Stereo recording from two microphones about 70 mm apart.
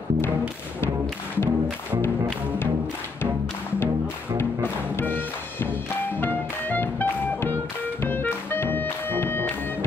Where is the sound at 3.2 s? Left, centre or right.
Left.